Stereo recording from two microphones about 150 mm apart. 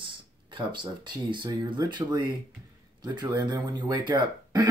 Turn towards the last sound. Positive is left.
turn(degrees=-30)  # may be behind; listen again after turning